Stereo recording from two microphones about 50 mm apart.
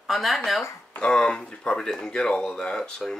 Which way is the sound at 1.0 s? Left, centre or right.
Centre.